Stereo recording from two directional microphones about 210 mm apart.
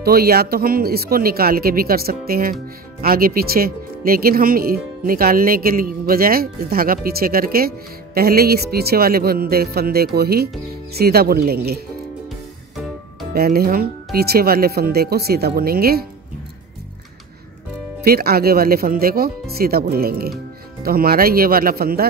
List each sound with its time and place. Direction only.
0.0 s speech: 45° right (ahead or behind)
12.3 s music: centre (ahead or behind)
13.3 s speech: 45° right (ahead or behind)
18.0 s speech: 45° right (ahead or behind)